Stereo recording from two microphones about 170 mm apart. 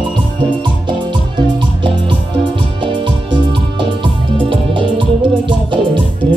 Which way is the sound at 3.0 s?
30° right (ahead or behind).